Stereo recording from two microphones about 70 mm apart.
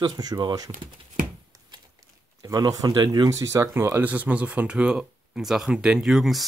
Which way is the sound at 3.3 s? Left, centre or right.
Right.